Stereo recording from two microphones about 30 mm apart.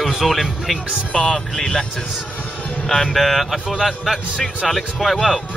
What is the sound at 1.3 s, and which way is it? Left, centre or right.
Speech, centre.